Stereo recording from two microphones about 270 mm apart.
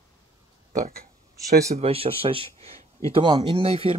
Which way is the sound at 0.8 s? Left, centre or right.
Right.